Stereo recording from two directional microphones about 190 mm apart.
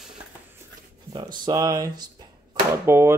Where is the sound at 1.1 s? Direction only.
20° right (ahead or behind).